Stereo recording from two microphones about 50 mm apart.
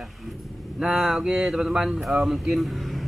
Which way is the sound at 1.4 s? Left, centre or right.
Centre.